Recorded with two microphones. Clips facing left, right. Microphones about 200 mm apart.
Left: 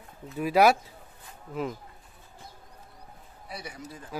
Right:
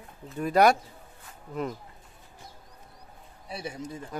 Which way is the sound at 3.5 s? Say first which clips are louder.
Right 5 dB; 25° right (ahead or behind).